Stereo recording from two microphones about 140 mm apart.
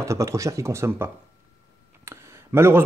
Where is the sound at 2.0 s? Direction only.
15° right (ahead or behind).